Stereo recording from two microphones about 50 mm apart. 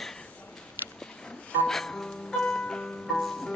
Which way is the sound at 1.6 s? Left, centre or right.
Centre.